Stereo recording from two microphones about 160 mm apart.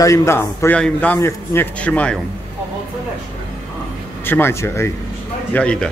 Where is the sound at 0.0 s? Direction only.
20° left (ahead or behind).